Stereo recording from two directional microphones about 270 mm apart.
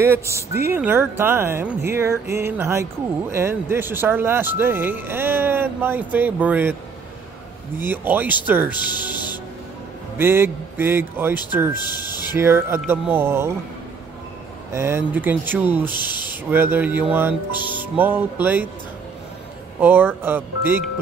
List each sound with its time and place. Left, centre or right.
0.0 s speech: centre
7.8 s speech: centre
9.1 s music: centre
10.1 s speech: centre
11.7 s speech: centre
12.4 s speech: centre
14.7 s speech: centre
15.8 s speech: centre
16.4 s speech: centre
19.8 s speech: centre